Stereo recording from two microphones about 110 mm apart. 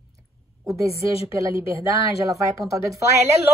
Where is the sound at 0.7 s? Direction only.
30° right (ahead or behind).